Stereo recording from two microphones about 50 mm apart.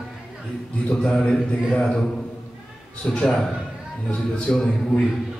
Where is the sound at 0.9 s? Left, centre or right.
Left.